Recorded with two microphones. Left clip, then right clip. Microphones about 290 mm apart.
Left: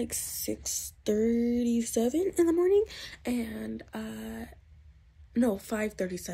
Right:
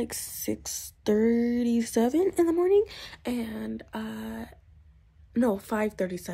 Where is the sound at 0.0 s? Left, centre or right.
Centre.